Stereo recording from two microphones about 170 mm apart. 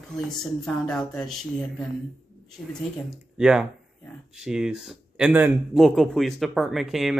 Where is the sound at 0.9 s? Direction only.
5° left (ahead or behind).